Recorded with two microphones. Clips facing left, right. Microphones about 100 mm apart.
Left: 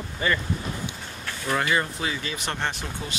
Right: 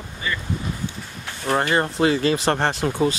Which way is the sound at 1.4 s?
40° right (ahead or behind).